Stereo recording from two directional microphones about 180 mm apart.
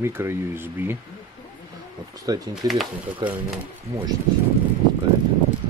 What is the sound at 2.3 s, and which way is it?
Speech, 20° right (ahead or behind).